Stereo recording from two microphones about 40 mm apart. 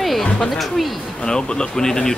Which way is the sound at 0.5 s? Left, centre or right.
Centre.